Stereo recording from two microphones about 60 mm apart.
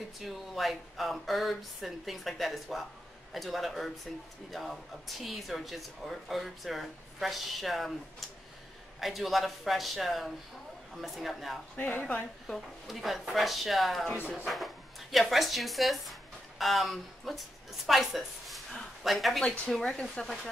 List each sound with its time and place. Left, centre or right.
0.2 s speech: centre
9.0 s speech: centre
11.7 s speech: left
12.4 s a woman's voice: centre